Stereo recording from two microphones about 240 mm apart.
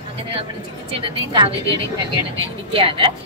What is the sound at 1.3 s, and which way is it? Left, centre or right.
Speech, right.